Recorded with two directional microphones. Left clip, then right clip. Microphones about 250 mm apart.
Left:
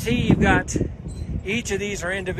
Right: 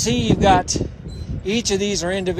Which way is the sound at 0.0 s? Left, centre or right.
Centre.